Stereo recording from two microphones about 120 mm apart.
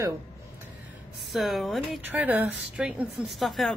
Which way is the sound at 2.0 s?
15° right (ahead or behind).